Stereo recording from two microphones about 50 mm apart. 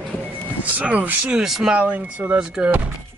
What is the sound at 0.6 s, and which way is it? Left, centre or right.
Speech, right.